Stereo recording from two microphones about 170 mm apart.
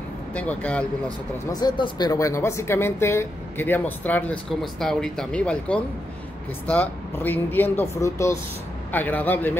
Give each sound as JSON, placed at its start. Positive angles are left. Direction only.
{"t": 0.3, "sound": "speech", "side_deg": 10}
{"t": 1.5, "sound": "speech", "side_deg": 25}